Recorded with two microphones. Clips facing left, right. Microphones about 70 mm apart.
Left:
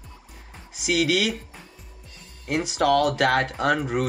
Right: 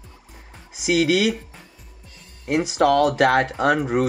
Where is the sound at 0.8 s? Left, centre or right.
Centre.